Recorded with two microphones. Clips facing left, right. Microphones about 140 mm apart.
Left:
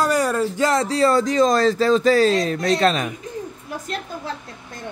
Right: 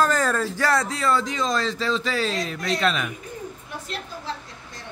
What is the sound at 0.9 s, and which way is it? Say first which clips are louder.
Speech: left 7 dB; 35° left (ahead or behind).